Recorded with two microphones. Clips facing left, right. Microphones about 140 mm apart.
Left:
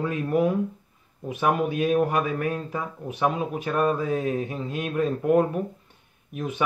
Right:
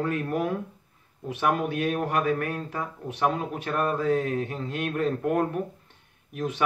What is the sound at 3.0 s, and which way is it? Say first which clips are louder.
Speech: left 1 dB; 20° left (ahead or behind).